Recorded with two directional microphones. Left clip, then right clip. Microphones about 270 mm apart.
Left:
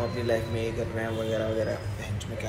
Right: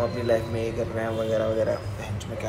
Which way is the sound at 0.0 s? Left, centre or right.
Centre.